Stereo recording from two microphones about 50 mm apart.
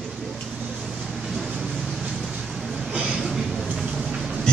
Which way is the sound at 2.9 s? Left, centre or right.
Centre.